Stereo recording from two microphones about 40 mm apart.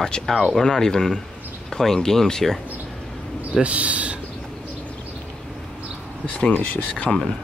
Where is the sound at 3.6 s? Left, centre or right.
Right.